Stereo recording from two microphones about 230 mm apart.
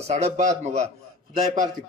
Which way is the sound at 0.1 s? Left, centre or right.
Right.